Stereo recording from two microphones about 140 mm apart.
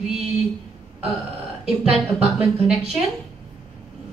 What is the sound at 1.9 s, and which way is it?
Speech, 5° right (ahead or behind).